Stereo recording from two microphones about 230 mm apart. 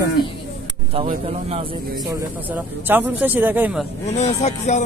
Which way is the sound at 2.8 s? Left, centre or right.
Centre.